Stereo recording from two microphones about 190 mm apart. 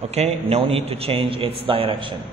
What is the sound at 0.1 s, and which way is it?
A man's voice, 35° right (ahead or behind).